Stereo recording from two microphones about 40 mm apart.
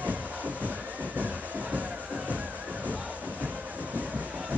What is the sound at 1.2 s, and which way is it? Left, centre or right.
Music, right.